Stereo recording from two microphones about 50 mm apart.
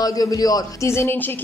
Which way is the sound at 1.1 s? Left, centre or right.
Left.